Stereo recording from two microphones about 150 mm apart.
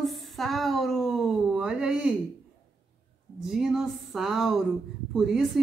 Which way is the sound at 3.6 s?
Centre (ahead or behind).